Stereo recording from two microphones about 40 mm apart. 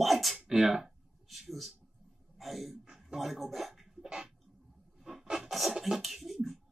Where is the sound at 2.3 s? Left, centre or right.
Centre.